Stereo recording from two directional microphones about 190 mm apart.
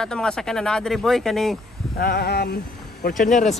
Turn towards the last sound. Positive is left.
turn(degrees=40)  # may be behind; listen again after turning